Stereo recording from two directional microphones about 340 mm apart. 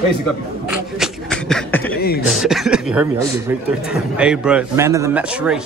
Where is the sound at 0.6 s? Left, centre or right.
Centre.